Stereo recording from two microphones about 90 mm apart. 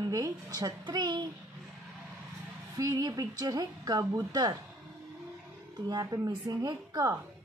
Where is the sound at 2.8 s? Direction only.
45° right (ahead or behind).